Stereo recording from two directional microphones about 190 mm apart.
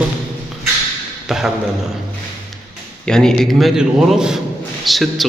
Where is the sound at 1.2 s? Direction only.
Centre (ahead or behind).